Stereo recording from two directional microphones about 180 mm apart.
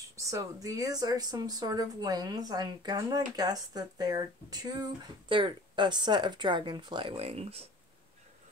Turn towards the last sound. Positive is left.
turn(degrees=-35)  # may be behind; listen again after turning